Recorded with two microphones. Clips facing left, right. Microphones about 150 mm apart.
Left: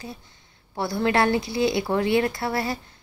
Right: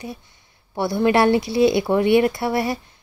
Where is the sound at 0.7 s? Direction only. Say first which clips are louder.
Right 5 dB; 20° right (ahead or behind).